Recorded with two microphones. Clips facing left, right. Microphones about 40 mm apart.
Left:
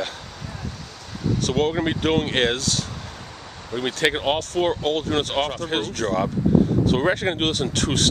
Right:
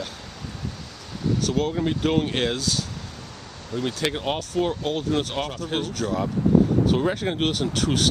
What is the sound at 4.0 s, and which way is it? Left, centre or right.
Speech, left.